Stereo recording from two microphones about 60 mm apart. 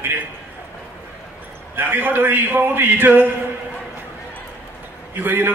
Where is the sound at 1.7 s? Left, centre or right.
Right.